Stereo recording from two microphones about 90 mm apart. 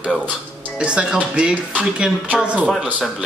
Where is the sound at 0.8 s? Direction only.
10° right (ahead or behind).